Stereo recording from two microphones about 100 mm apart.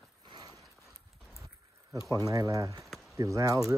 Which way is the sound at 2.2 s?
35° right (ahead or behind).